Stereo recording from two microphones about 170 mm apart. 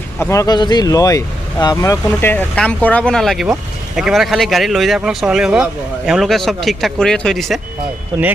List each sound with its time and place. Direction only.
0.2 s speech: 15° left (ahead or behind)
2.0 s speech: 10° left (ahead or behind)